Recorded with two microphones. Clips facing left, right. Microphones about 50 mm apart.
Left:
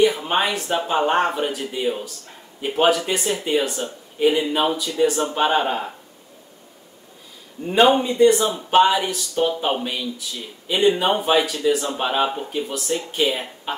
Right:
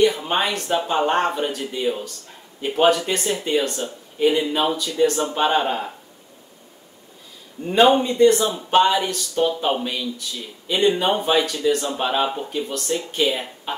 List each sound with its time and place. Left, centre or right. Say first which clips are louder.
0.0 s speech: even; centre
7.6 s speech: even; centre